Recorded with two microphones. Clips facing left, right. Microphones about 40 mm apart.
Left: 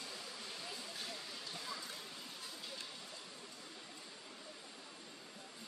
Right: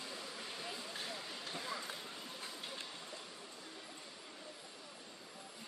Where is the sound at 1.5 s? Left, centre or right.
Right.